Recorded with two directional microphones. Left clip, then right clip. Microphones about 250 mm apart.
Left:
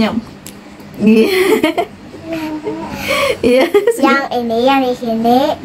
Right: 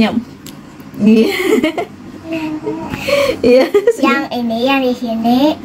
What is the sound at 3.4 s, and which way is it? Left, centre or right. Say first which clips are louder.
Speech: right 1 dB; centre.